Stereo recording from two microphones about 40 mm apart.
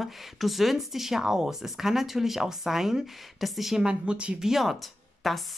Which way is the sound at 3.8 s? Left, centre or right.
Right.